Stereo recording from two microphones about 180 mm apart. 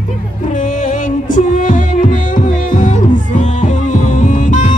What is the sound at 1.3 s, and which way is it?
Music, 45° left (ahead or behind).